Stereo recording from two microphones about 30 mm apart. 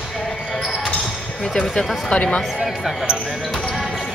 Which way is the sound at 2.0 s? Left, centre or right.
Left.